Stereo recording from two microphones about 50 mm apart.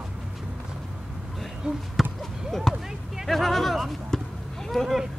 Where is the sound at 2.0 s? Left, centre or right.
Centre.